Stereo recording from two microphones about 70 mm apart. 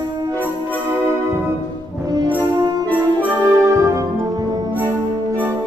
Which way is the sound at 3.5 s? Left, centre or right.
Right.